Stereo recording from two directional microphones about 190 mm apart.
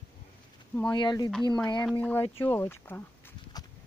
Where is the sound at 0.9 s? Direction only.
25° left (ahead or behind).